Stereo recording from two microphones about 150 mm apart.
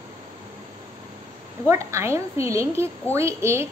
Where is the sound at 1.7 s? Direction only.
20° right (ahead or behind).